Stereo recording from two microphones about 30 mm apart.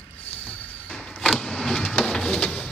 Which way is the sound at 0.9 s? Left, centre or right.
Centre.